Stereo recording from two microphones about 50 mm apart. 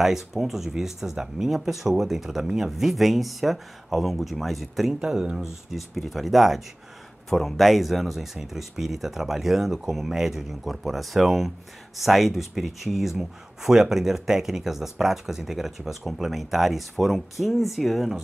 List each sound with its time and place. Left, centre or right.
0.0 s speech: centre
5.0 s speech: centre
5.4 s speech: centre